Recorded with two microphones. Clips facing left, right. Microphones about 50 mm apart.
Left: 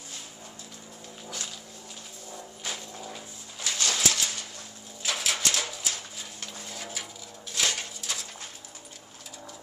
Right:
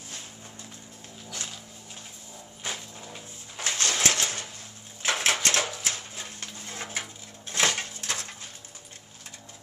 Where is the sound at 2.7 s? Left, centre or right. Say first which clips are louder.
Left 1 dB; centre.